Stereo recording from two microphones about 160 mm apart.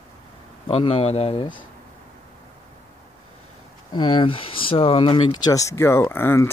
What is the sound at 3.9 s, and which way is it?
Speech, 30° left (ahead or behind).